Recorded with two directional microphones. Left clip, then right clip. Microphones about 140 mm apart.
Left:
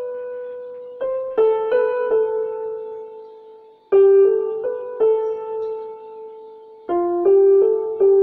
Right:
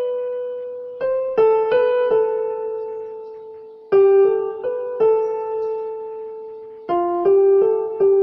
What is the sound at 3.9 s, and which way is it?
Music, 5° right (ahead or behind).